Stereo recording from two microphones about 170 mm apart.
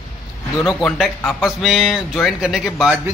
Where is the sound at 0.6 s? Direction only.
Centre (ahead or behind).